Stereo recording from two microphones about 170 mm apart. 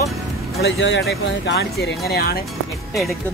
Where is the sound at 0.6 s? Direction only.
90° left.